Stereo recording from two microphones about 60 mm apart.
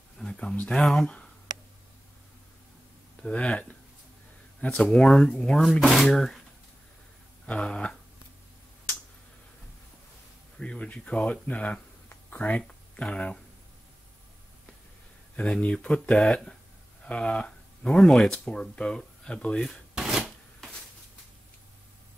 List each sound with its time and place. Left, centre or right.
0.2 s a sound: centre
0.8 s speech: centre
3.2 s speech: centre
4.8 s speech: centre
7.4 s speech: centre
10.6 s speech: centre
15.3 s speech: left
20.0 s a sound: centre